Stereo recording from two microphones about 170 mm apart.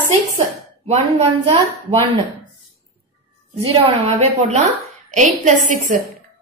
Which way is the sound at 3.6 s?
40° right (ahead or behind).